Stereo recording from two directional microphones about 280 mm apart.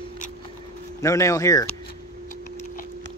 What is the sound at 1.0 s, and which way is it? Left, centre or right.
Speech, centre.